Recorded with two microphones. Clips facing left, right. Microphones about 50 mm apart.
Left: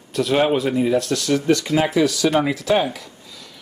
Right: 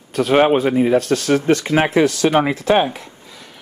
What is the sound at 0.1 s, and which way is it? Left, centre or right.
Speech, right.